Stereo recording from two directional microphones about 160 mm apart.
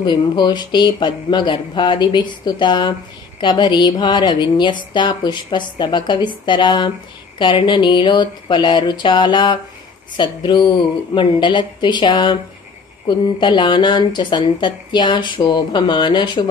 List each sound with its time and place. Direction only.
0.0 s speech: 25° left (ahead or behind)
13.4 s speech: 30° left (ahead or behind)